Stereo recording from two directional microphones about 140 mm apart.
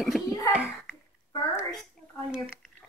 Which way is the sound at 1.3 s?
25° left (ahead or behind).